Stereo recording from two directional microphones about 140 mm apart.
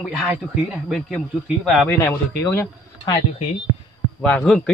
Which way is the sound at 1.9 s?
15° left (ahead or behind).